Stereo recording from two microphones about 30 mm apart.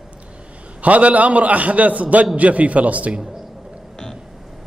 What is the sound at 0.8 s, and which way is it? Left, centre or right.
A man's voice, right.